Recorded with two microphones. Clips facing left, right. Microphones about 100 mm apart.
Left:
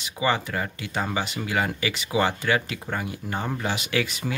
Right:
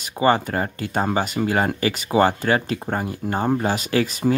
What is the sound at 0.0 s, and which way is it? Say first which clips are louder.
Speech: right 6 dB; 45° right (ahead or behind).